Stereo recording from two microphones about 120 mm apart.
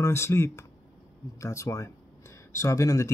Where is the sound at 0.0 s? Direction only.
20° left (ahead or behind).